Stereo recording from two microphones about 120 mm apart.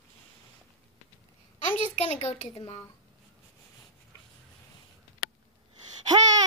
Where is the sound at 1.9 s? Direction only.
65° left (ahead or behind).